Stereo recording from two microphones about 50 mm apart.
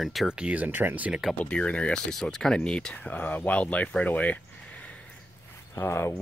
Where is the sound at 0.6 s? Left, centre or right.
Right.